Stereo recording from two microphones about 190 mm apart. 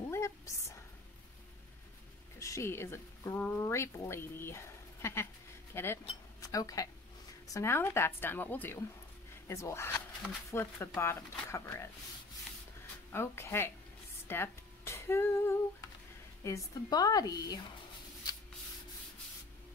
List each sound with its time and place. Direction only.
0.1 s a sound: 15° left (ahead or behind)
2.3 s speech: 15° left (ahead or behind)
13.1 s speech: 15° left (ahead or behind)
14.2 s music: 10° left (ahead or behind)
16.4 s a woman's voice: 20° left (ahead or behind)